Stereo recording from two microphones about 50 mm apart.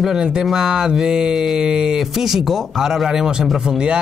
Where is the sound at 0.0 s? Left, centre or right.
Centre.